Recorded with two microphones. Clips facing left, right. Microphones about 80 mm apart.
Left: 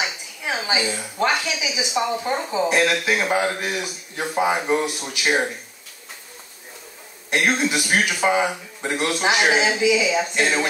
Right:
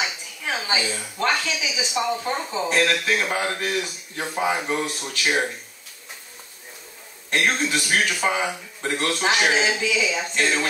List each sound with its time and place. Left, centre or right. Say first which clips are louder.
0.5 s speech: left 2 dB; centre
7.2 s speech: left 2 dB; centre